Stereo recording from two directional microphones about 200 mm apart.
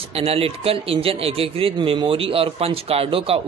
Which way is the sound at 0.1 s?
30° right (ahead or behind).